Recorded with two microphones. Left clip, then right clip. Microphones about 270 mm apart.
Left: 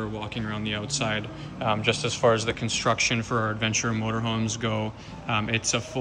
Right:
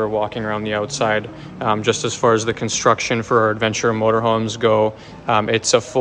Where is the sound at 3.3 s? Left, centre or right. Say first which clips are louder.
Right 11 dB; right.